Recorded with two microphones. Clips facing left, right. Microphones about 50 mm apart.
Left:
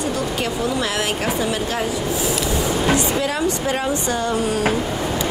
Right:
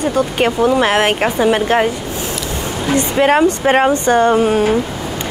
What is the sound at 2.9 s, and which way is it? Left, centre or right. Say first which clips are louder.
A woman's voice: right 7 dB; right.